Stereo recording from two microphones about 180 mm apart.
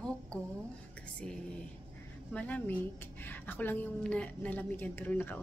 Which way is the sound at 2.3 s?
10° left (ahead or behind).